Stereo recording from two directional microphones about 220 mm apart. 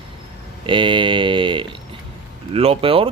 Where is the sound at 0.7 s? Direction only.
20° right (ahead or behind).